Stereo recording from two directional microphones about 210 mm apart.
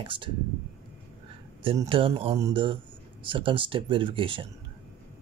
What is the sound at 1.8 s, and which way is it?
Speech, 25° right (ahead or behind).